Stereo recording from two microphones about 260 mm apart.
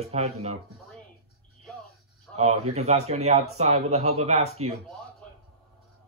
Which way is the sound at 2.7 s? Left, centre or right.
Right.